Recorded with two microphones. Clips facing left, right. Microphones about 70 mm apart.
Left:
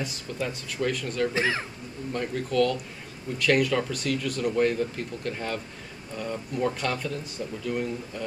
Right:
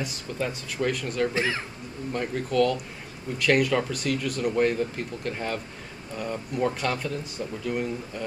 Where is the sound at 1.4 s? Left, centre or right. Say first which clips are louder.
Left 1 dB; left.